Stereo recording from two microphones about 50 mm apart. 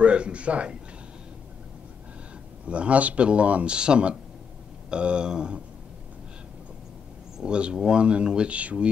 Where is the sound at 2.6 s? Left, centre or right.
Right.